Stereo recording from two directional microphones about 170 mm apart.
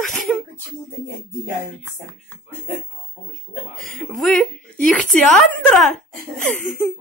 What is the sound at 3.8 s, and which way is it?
Speech, centre (ahead or behind).